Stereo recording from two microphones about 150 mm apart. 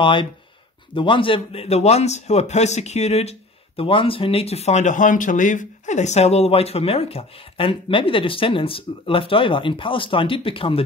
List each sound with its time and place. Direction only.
0.0 s a man's voice: 35° left (ahead or behind)